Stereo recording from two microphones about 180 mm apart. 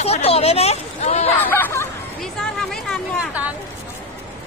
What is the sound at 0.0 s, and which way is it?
A woman's voice, 35° left (ahead or behind).